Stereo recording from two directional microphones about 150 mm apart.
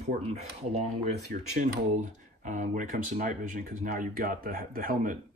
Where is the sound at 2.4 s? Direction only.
60° right (ahead or behind); by 5.1 s 75° right (ahead or behind).